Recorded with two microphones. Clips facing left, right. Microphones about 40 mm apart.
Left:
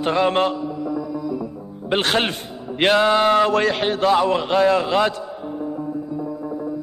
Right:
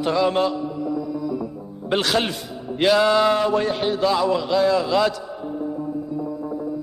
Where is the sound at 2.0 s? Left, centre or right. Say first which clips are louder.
Left 2 dB; left.